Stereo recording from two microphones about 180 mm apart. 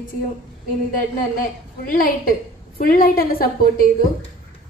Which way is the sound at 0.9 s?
50° left (ahead or behind).